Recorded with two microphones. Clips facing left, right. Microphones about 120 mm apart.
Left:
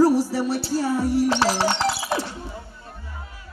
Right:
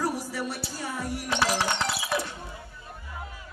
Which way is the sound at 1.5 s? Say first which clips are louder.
Left 6 dB; 30° left (ahead or behind).